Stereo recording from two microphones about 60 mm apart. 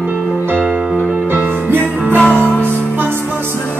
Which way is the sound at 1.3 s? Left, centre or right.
Right.